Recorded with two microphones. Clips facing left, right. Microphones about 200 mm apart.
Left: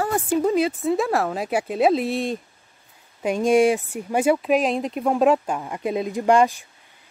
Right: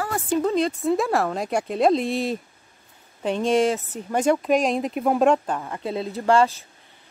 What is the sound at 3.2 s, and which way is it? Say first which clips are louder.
Speech: left 3 dB; 10° left (ahead or behind).